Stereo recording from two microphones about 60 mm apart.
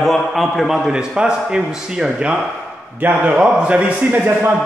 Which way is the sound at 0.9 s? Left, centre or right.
Centre.